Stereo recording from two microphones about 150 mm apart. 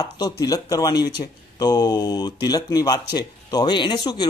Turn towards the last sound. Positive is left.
turn(degrees=30)  # may be behind; listen again after turning